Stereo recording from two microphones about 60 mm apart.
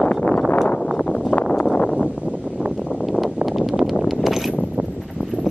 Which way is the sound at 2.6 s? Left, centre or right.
Centre.